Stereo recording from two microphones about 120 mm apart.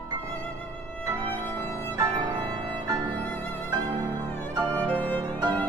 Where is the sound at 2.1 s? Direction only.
45° right (ahead or behind).